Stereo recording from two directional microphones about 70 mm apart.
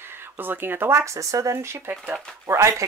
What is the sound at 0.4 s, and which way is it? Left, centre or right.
Speech, right.